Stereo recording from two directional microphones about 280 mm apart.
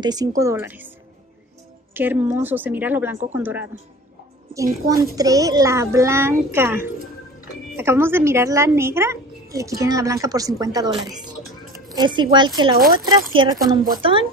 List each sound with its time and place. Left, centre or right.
0.0 s a woman's voice: centre
2.0 s a woman's voice: centre